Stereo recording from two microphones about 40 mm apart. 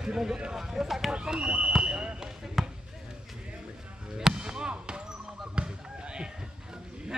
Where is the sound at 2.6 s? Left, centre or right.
Centre.